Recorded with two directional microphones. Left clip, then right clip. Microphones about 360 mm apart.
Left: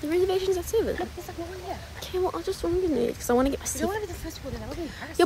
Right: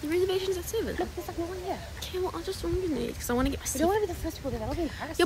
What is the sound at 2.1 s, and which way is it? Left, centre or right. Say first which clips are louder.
Speech: left 5 dB; centre.